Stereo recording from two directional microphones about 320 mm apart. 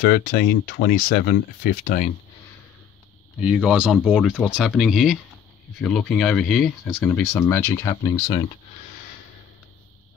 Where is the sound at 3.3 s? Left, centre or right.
Centre.